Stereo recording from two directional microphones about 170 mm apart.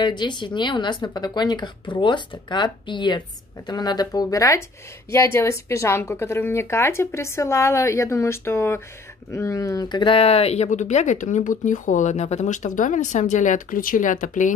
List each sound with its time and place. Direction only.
0.0 s speech: 25° left (ahead or behind); by 14.5 s 45° left (ahead or behind)